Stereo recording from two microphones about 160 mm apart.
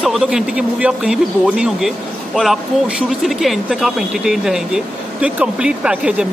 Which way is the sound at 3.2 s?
Centre (ahead or behind).